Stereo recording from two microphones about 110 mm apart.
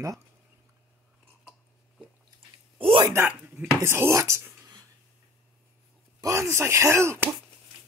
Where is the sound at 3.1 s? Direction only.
20° right (ahead or behind).